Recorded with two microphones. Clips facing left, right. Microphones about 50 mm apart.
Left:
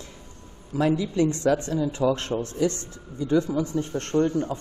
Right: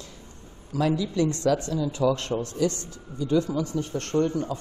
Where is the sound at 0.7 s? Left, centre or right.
Left.